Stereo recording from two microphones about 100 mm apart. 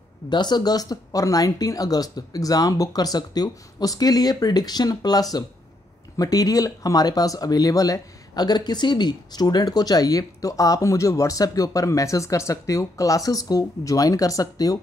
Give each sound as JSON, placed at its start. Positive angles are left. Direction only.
{"t": 0.3, "sound": "speech", "side_deg": 45}